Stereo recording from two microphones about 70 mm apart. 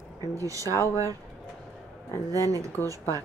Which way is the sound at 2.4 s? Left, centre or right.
Right.